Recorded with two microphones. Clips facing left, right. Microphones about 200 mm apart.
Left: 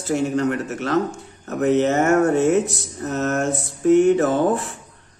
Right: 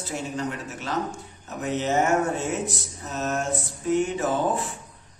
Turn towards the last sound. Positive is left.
turn(degrees=60)  # may be behind; listen again after turning